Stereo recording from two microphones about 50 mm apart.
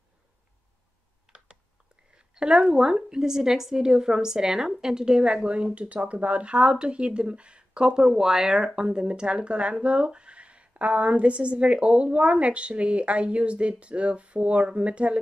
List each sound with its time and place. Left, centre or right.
2.1 s a woman's voice: centre